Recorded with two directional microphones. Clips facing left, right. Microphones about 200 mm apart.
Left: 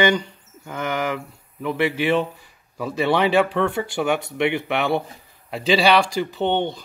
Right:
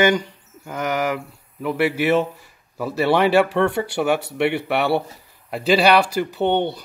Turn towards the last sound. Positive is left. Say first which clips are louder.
# right 2 dB
turn(degrees=-10)  # may be behind; listen again after turning